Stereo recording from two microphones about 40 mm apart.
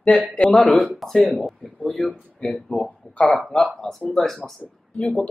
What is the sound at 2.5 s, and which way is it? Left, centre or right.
Speech, centre.